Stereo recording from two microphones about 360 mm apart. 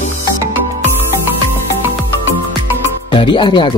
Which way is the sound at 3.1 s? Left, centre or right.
Centre.